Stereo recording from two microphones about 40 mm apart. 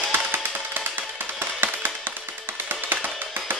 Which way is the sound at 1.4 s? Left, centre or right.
Right.